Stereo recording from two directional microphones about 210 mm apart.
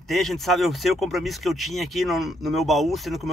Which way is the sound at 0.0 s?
Centre (ahead or behind).